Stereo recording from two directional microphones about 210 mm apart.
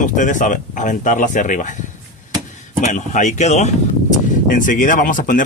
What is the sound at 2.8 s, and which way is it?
Speech, 35° left (ahead or behind).